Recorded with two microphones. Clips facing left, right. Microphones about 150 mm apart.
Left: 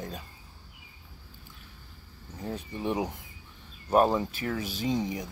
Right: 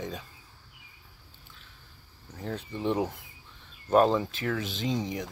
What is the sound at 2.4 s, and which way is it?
Speech, 15° left (ahead or behind).